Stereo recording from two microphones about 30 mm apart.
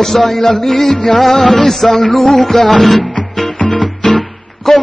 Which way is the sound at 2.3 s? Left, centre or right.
Centre.